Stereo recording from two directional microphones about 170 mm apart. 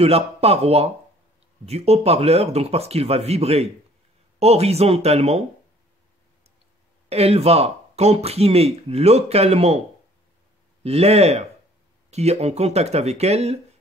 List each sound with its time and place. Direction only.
0.0 s speech: 35° right (ahead or behind)
7.1 s speech: 35° right (ahead or behind)
10.8 s speech: 35° right (ahead or behind)